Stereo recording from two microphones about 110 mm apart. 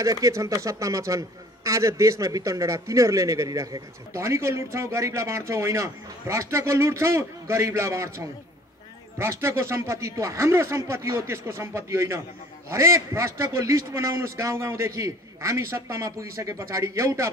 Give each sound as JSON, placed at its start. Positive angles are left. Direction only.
{"t": 0.0, "sound": "a man's voice", "side_deg": -30}
{"t": 9.2, "sound": "a man's voice", "side_deg": -25}